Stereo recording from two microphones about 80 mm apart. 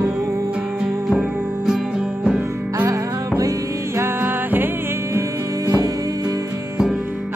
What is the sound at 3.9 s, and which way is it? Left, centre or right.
Music, right.